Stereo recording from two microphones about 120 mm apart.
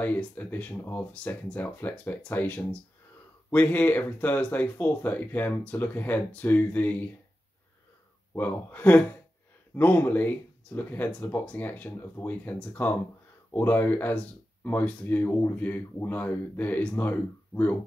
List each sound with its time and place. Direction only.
0.0 s speech: 15° left (ahead or behind)
8.4 s speech: 15° left (ahead or behind)